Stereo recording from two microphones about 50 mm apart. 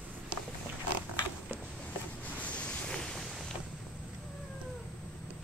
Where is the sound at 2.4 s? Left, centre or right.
Left.